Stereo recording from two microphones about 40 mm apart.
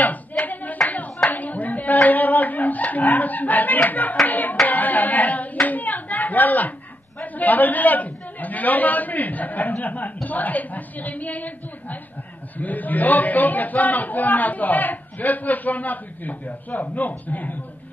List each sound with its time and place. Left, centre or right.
0.0 s clapping: left
0.8 s a sound: left
4.3 s a man's voice: left
4.6 s hands: left
7.2 s a man's voice: left